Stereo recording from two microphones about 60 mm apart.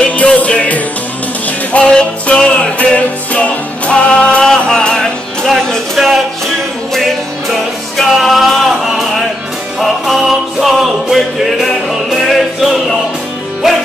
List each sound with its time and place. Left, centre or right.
0.0 s music: left
8.1 s music: centre